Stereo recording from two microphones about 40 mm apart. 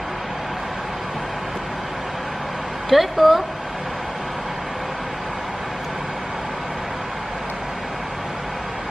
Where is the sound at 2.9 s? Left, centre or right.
Centre.